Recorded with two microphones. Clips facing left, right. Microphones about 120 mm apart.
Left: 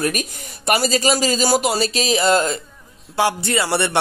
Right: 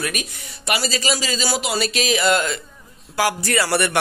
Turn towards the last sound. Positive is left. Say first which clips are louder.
# even
turn(degrees=25)  # may be behind; listen again after turning